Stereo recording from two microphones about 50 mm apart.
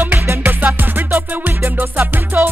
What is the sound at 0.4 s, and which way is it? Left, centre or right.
Music, right.